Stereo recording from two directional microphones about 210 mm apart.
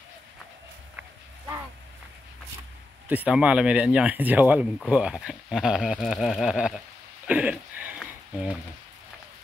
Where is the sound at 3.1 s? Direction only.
5° right (ahead or behind).